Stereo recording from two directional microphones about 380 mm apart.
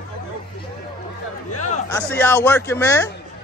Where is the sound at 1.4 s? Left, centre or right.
Left.